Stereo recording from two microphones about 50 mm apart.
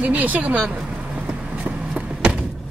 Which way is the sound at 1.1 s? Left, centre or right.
Right.